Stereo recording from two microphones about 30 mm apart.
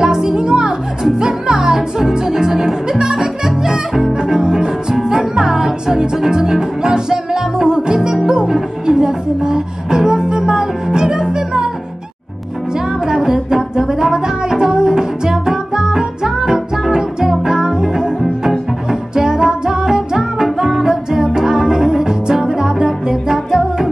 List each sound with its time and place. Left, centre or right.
0.0 s music: right
13.0 s music: centre